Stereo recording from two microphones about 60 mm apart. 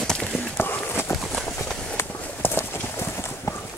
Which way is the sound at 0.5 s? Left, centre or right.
Left.